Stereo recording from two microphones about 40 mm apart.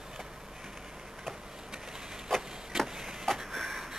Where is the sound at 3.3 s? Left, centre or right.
Centre.